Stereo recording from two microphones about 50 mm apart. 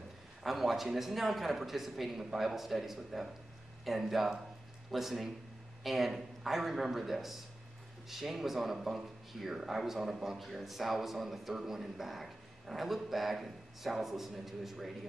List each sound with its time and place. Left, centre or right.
0.4 s speech: centre